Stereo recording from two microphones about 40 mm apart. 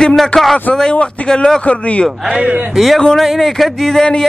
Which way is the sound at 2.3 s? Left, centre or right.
Right.